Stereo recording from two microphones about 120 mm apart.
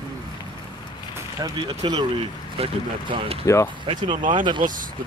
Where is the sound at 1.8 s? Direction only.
40° right (ahead or behind).